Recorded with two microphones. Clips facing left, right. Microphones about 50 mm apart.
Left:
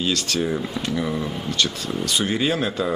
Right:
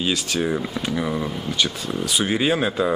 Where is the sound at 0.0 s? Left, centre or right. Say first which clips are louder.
Even; centre.